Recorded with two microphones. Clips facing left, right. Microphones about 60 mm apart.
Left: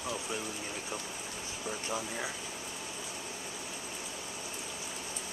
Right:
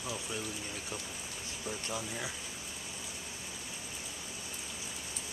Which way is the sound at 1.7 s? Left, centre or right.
Centre.